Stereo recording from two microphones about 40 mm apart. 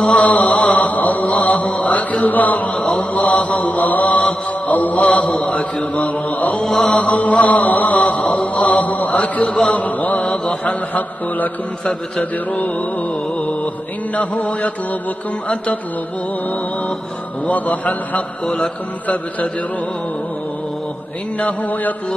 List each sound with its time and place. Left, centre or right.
0.1 s chant: left
6.6 s mantra: centre
7.0 s mantra: left
9.4 s mantra: left
9.7 s mantra: left
10.2 s mantra: left
10.7 s mantra: left
14.1 s mantra: left
17.5 s mantra: left